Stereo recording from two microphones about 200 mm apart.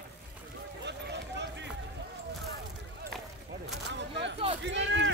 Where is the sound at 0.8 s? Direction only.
60° right (ahead or behind).